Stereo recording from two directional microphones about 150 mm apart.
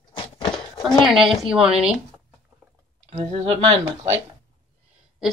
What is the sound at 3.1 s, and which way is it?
Speech, 45° right (ahead or behind).